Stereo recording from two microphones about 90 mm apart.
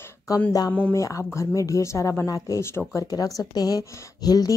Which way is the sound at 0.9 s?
35° left (ahead or behind).